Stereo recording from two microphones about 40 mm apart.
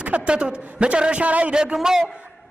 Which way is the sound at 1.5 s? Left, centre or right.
Centre.